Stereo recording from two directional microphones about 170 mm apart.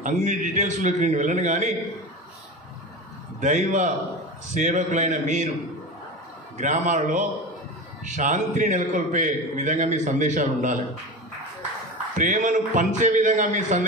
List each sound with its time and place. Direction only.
0.0 s a man's voice: 45° right (ahead or behind)
3.3 s a man's voice: 45° right (ahead or behind)
6.6 s a man's voice: 45° right (ahead or behind)
12.2 s a man's voice: 45° right (ahead or behind)